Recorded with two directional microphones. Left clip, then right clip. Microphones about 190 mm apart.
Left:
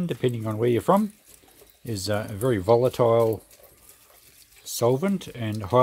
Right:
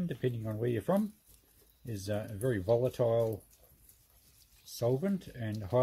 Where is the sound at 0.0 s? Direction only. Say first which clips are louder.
Left 10 dB; 45° left (ahead or behind).